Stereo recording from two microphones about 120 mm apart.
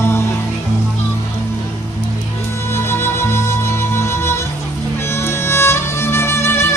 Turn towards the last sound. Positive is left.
turn(degrees=20)  # may be behind; listen again after turning